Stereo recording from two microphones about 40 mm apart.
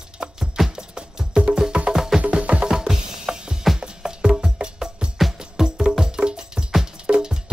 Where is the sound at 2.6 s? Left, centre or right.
Centre.